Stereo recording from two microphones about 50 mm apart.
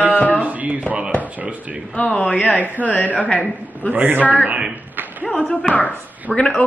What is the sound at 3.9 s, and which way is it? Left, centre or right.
Speech, right.